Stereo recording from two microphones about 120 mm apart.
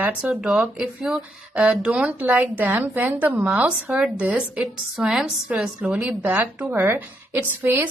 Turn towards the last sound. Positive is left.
turn(degrees=-15)  # may be behind; listen again after turning